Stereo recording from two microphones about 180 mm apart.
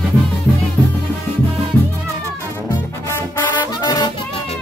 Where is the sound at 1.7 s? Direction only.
10° left (ahead or behind).